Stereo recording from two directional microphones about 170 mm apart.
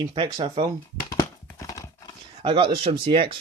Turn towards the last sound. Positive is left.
turn(degrees=-35)  # may be behind; listen again after turning